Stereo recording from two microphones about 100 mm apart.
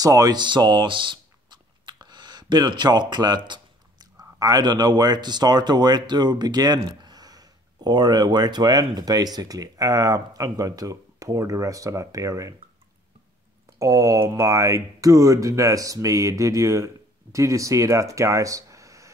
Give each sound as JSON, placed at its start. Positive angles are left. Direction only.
{"t": 0.0, "sound": "a sound", "side_deg": -40}
{"t": 4.2, "sound": "speech", "side_deg": -40}
{"t": 13.7, "sound": "speech", "side_deg": -30}